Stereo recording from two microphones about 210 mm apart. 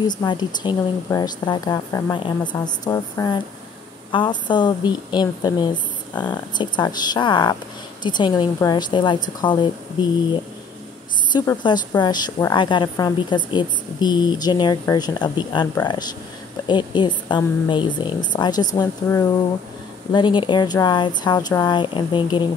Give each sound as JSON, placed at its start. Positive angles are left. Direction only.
{"t": 0.0, "sound": "a woman's voice", "side_deg": 20}
{"t": 6.1, "sound": "speech", "side_deg": 5}
{"t": 6.6, "sound": "a woman's voice", "side_deg": 20}
{"t": 11.3, "sound": "a woman's voice", "side_deg": 20}